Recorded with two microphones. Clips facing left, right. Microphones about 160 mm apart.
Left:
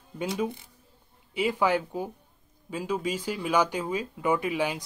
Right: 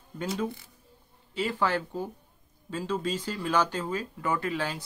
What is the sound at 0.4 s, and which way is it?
Speech, 20° left (ahead or behind).